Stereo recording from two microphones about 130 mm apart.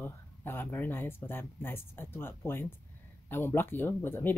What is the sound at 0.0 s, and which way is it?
Speech, 15° left (ahead or behind).